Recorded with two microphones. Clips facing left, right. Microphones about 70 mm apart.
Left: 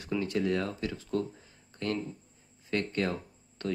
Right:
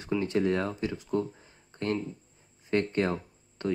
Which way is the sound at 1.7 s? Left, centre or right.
Right.